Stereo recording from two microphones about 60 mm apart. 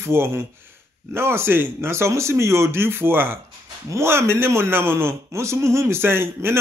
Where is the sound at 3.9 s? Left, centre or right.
Right.